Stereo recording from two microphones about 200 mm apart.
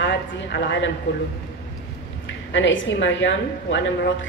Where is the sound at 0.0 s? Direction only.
65° left (ahead or behind).